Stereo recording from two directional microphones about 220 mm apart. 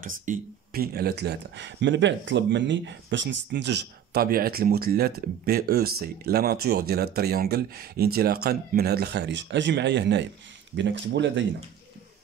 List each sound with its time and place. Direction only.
0.0 s speech: 35° right (ahead or behind); by 11.4 s 55° right (ahead or behind)